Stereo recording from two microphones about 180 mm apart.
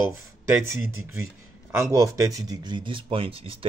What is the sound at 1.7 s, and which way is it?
Speech, 15° right (ahead or behind).